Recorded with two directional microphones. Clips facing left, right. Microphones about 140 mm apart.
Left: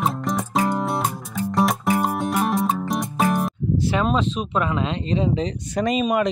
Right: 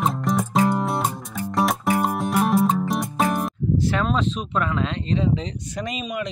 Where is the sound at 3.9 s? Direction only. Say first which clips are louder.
Left 2 dB; 10° left (ahead or behind).